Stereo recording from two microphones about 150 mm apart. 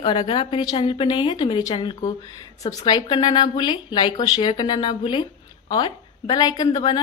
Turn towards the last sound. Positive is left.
turn(degrees=30)  # may be behind; listen again after turning